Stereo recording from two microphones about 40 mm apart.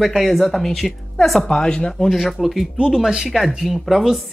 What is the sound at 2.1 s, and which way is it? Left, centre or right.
Speech, centre.